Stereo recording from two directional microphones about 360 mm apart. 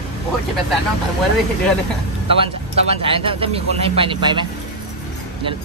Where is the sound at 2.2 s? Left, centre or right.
Centre.